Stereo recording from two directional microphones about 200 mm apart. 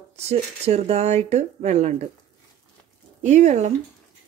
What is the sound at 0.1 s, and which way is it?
Speech, 30° right (ahead or behind).